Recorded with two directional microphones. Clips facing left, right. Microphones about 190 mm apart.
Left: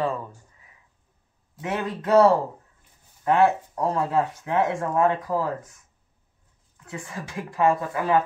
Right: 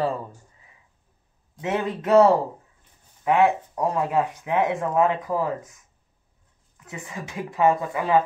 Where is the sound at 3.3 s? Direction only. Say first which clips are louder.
Even; 15° right (ahead or behind).